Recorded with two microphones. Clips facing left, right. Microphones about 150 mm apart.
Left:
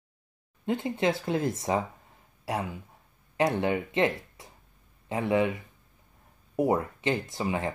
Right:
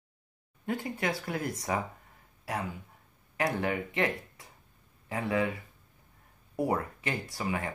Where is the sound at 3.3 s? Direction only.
25° left (ahead or behind).